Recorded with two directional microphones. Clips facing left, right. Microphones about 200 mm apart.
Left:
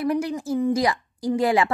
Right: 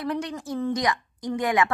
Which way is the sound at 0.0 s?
25° left (ahead or behind).